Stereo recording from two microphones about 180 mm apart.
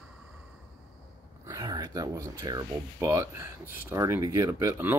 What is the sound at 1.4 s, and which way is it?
Speech, 20° right (ahead or behind).